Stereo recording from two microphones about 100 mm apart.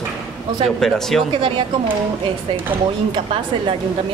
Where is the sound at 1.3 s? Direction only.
55° right (ahead or behind).